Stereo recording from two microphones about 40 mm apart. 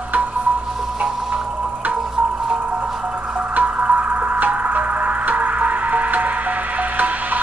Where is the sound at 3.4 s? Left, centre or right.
Right.